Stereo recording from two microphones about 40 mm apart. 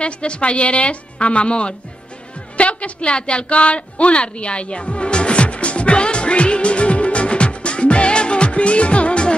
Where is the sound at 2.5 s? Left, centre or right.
Left.